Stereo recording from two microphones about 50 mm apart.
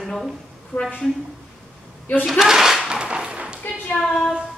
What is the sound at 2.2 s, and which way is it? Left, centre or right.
Speech, centre.